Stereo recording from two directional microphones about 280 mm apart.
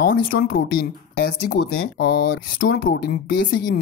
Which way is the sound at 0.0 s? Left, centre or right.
Left.